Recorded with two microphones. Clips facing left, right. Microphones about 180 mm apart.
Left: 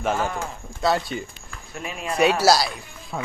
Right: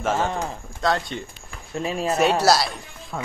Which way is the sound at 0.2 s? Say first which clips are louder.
Right 2 dB; 25° right (ahead or behind).